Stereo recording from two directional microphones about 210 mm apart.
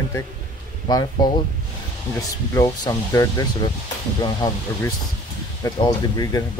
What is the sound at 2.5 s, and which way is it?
Speech, 15° left (ahead or behind).